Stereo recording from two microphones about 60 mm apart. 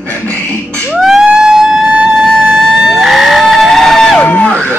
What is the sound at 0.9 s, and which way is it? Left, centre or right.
Emergency vehicle, centre.